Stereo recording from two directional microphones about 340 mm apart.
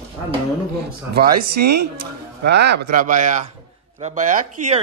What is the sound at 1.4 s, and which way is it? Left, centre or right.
A woman's voice, right.